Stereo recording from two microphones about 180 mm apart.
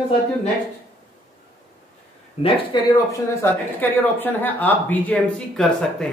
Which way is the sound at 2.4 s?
35° left (ahead or behind).